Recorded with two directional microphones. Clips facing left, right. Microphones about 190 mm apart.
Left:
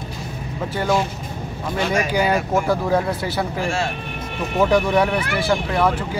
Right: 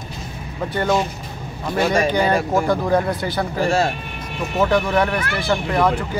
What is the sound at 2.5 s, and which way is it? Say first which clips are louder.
Speech: right 1 dB; 5° left (ahead or behind).